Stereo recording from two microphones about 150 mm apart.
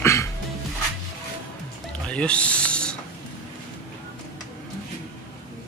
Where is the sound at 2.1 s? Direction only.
10° left (ahead or behind).